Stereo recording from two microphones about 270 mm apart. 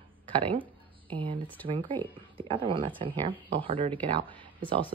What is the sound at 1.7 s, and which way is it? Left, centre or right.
Speech, centre.